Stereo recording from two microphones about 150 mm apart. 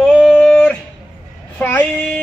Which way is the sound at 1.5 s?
10° left (ahead or behind).